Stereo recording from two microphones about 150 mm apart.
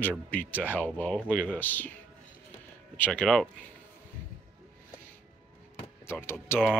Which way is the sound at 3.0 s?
5° left (ahead or behind).